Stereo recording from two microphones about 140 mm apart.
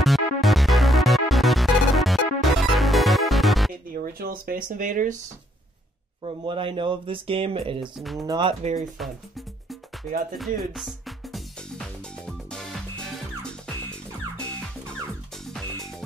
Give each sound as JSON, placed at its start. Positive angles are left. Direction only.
{"t": 0.0, "sound": "music", "side_deg": 0}
{"t": 3.9, "sound": "speech", "side_deg": -90}
{"t": 6.2, "sound": "speech", "side_deg": -40}
{"t": 7.8, "sound": "speech", "side_deg": 0}
{"t": 8.3, "sound": "speech", "side_deg": -35}
{"t": 8.7, "sound": "speech", "side_deg": 0}
{"t": 10.3, "sound": "music", "side_deg": 0}
{"t": 15.4, "sound": "music", "side_deg": 5}